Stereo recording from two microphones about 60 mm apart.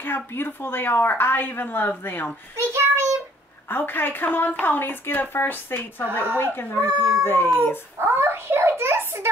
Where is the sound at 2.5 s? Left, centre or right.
Right.